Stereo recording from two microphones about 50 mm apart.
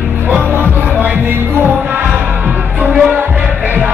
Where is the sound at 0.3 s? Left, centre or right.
Right.